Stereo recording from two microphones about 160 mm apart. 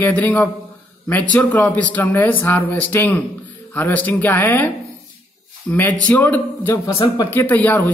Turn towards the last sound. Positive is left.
turn(degrees=10)  # may be behind; listen again after turning